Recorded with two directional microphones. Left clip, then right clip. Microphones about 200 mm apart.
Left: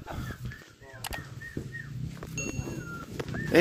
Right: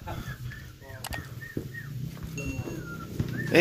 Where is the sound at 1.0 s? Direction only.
Centre (ahead or behind).